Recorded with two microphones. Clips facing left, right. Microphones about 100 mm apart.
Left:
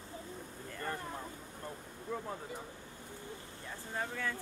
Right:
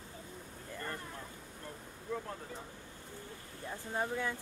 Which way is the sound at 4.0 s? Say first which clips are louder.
Right 3 dB; 20° right (ahead or behind).